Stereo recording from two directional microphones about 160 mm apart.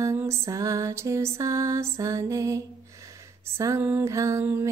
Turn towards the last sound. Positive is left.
turn(degrees=-15)  # may be behind; listen again after turning